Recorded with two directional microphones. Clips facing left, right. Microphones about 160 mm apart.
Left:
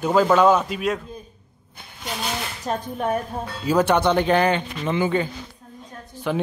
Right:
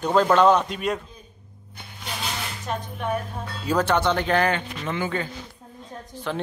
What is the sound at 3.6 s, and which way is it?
Speech, 15° left (ahead or behind).